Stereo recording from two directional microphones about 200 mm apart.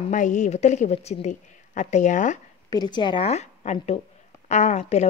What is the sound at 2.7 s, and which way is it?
A woman's voice, 20° left (ahead or behind).